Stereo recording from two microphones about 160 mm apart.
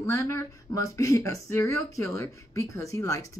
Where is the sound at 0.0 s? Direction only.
15° left (ahead or behind).